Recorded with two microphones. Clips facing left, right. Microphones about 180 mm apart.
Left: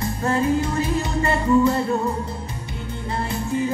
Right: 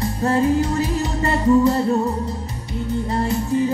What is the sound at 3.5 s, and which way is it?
Music, 35° right (ahead or behind).